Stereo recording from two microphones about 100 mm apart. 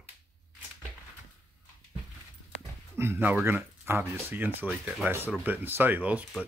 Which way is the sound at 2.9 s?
25° right (ahead or behind).